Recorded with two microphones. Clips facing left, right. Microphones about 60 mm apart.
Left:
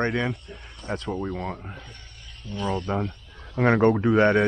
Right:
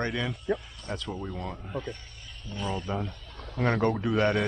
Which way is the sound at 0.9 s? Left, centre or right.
Left.